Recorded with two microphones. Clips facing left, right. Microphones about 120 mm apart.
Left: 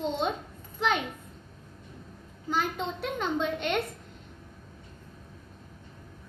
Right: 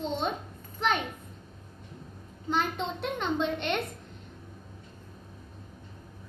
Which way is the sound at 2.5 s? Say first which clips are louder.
Even; 5° left (ahead or behind).